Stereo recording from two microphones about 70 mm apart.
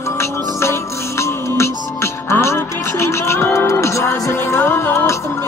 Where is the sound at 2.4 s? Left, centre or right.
Left.